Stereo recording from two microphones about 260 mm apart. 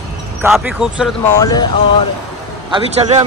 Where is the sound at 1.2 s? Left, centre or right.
Centre.